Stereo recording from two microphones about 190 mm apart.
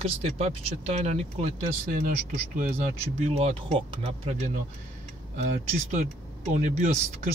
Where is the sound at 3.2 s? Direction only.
30° right (ahead or behind).